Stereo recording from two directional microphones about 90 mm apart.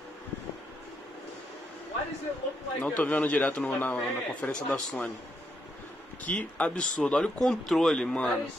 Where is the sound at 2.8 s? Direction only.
15° left (ahead or behind).